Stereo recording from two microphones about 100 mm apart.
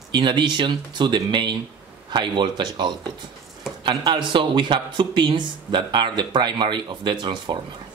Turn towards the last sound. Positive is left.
turn(degrees=-50)  # may be behind; listen again after turning